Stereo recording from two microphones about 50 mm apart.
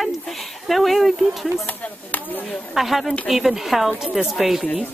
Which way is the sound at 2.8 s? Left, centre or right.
Centre.